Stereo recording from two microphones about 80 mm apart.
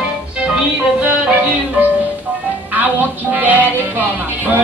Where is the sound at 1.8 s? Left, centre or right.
Centre.